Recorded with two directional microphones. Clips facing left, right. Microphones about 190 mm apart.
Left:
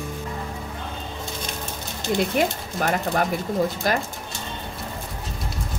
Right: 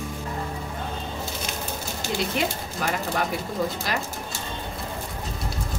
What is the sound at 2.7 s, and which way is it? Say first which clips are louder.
Speech: left 4 dB; 45° left (ahead or behind).